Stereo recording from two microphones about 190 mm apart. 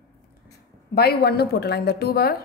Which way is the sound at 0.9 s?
55° left (ahead or behind).